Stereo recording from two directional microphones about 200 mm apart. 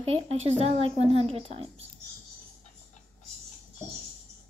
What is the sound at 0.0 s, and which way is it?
A woman's voice, 30° right (ahead or behind).